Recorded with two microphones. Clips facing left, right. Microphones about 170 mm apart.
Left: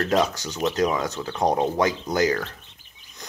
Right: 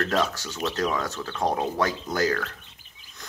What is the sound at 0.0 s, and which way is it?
Speech, 15° left (ahead or behind).